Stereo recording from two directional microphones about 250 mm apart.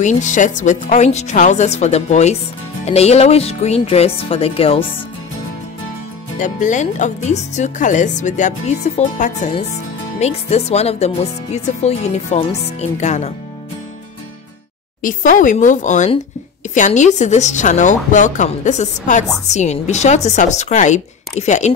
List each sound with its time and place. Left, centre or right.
0.0 s speech: left
6.4 s speech: left
15.0 s speech: left